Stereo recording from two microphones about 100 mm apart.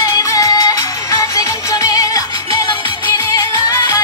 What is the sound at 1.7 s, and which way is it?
Music, 35° left (ahead or behind).